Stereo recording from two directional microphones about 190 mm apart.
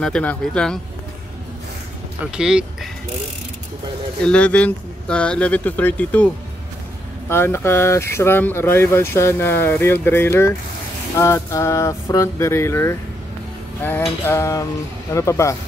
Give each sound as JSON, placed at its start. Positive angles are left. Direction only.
{"t": 0.0, "sound": "speech", "side_deg": 5}
{"t": 2.3, "sound": "speech", "side_deg": -5}
{"t": 4.2, "sound": "speech", "side_deg": 5}